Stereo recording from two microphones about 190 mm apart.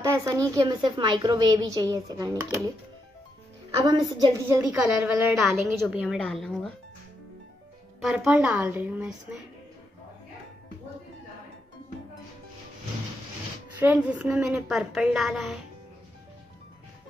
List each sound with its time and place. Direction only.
0.0 s a woman's voice: 15° right (ahead or behind)
3.8 s a woman's voice: 20° right (ahead or behind)
4.5 s a woman's voice: 5° right (ahead or behind)
8.0 s a woman's voice: 5° right (ahead or behind)
13.7 s a woman's voice: 10° right (ahead or behind)